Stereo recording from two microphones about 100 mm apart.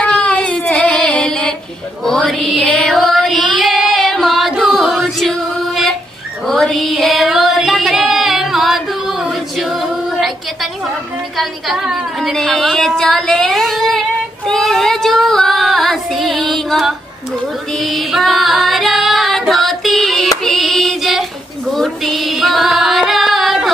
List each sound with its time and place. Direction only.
0.0 s child singing: 10° left (ahead or behind)
2.0 s music: 5° left (ahead or behind)
6.4 s singing: 5° left (ahead or behind)
11.3 s a sound: centre (ahead or behind)
14.4 s child singing: 5° left (ahead or behind)
17.7 s female singing: centre (ahead or behind)